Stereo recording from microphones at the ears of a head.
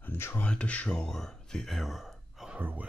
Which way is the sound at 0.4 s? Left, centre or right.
Centre.